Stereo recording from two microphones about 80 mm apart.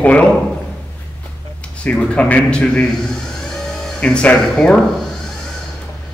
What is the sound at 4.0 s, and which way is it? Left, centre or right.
Speech, centre.